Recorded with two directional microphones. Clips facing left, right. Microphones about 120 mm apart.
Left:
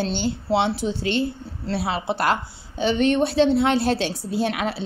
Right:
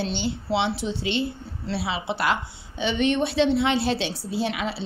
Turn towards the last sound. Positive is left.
turn(degrees=50)  # may be behind; listen again after turning